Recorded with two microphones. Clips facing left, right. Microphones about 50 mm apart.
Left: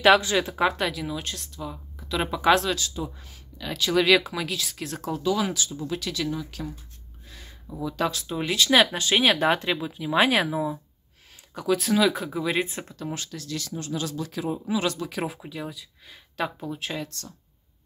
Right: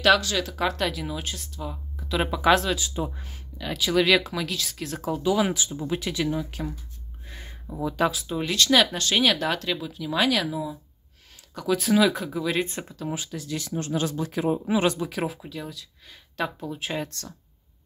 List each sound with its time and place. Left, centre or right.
0.0 s speech: left
0.7 s speech: centre
2.9 s speech: right
3.5 s speech: centre
5.2 s speech: centre
7.2 s a sound: right
7.8 s speech: centre
8.4 s speech: centre; by 10.8 s left
11.5 s speech: centre; by 13.7 s right
13.7 s speech: right
15.0 s speech: centre